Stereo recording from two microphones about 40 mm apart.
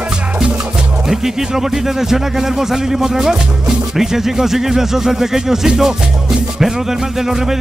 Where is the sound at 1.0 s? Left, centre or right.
Centre.